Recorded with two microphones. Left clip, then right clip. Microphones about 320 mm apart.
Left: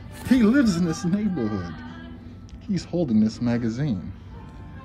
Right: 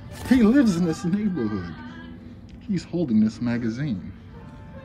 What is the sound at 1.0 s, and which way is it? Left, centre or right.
Speech, centre.